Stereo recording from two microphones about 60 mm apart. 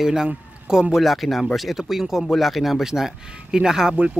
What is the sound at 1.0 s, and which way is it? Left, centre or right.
Speech, centre.